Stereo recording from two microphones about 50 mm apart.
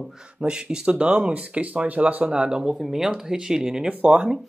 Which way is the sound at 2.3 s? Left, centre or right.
Centre.